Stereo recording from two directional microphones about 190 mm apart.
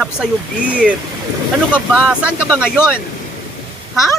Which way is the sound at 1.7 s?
5° right (ahead or behind).